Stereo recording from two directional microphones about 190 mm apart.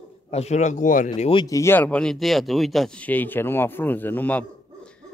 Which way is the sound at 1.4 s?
15° left (ahead or behind).